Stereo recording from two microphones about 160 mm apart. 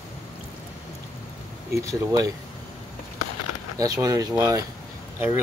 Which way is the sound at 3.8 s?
20° right (ahead or behind).